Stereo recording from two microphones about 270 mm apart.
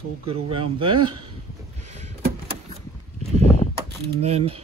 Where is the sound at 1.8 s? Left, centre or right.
Right.